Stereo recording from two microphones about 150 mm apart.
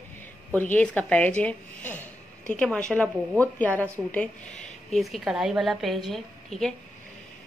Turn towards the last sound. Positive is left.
turn(degrees=0)  # may be behind; listen again after turning